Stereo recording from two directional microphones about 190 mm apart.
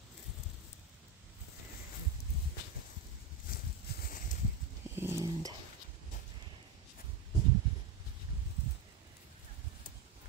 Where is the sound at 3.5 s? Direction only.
50° left (ahead or behind).